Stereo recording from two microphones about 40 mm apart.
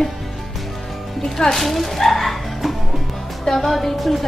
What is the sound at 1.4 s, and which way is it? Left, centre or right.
Music, centre.